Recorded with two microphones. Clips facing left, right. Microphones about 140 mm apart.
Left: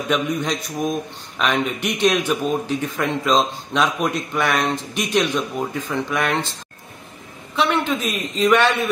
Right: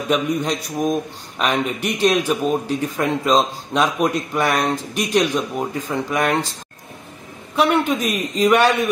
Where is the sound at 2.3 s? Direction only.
5° right (ahead or behind).